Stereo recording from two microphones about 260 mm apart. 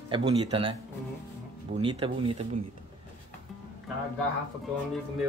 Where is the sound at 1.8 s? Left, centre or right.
Centre.